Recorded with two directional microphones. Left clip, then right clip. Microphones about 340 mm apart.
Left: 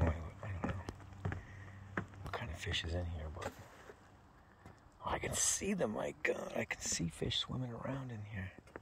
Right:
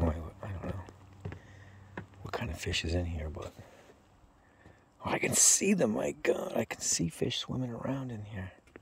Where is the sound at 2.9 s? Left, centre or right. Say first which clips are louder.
Right 8 dB; right.